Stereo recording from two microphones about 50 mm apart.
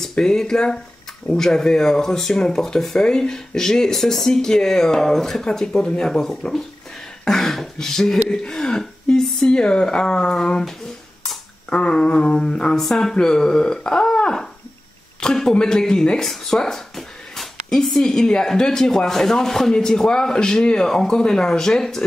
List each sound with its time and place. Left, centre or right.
0.1 s speech: centre
11.7 s speech: centre
12.7 s speech: centre